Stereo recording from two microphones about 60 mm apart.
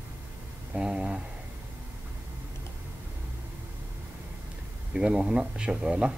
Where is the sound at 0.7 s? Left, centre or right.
Centre.